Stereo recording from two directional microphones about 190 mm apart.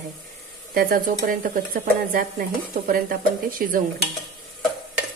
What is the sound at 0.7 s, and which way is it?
A woman's voice, 50° right (ahead or behind).